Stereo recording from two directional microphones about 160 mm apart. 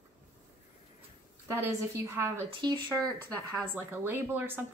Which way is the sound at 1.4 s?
15° right (ahead or behind).